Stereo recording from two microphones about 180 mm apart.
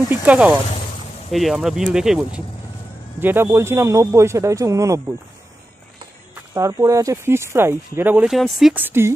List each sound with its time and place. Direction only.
0.1 s speech: 10° right (ahead or behind)
6.5 s speech: 15° right (ahead or behind)